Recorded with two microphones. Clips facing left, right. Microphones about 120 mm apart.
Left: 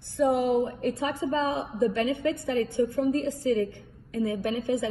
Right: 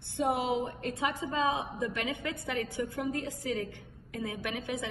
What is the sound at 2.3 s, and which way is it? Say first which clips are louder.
A woman's voice: left 8 dB; 25° left (ahead or behind).